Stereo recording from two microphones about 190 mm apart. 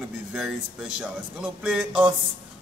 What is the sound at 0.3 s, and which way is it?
A man's voice, 5° right (ahead or behind).